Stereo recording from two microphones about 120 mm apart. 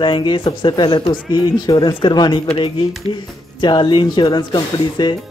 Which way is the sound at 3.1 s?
45° left (ahead or behind).